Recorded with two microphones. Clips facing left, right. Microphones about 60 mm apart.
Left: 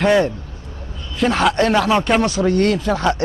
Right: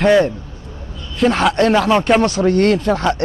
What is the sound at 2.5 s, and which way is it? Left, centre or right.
Speech, right.